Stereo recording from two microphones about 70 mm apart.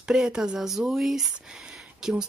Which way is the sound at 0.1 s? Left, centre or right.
Centre.